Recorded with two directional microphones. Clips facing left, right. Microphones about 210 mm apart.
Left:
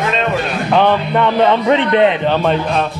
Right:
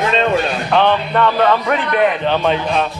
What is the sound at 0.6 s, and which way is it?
A man's voice, 10° left (ahead or behind).